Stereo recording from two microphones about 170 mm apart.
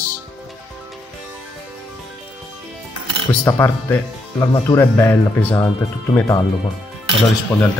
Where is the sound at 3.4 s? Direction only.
15° left (ahead or behind).